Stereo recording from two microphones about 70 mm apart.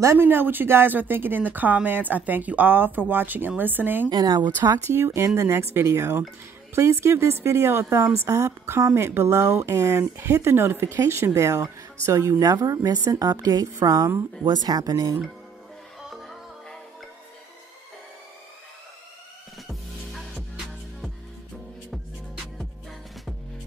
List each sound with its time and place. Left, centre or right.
0.0 s speech: right
0.3 s speech: right
4.1 s speech: right
4.8 s speech: right
5.5 s a woman's voice: right
9.9 s a woman's voice: right
14.5 s speech: right